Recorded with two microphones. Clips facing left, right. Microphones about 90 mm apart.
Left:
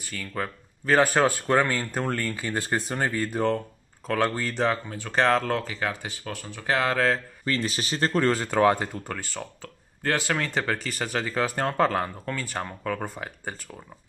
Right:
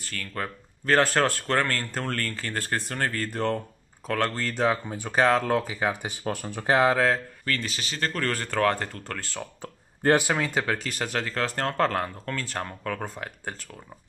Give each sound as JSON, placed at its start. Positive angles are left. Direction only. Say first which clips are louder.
{"t": 0.0, "sound": "speech", "louder": "left 1 dB", "side_deg": 5}
{"t": 4.8, "sound": "speech", "louder": "right 1 dB", "side_deg": -15}
{"t": 6.2, "sound": "speech", "louder": "right 4 dB", "side_deg": -30}
{"t": 7.5, "sound": "speech", "louder": "left 4 dB", "side_deg": 20}
{"t": 9.6, "sound": "speech", "louder": "right 5 dB", "side_deg": -20}